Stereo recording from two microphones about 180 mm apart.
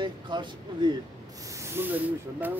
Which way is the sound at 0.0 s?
25° right (ahead or behind).